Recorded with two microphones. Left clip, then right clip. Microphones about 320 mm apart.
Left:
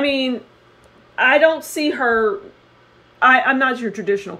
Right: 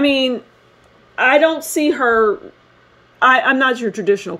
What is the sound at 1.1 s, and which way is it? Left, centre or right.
Speech, right.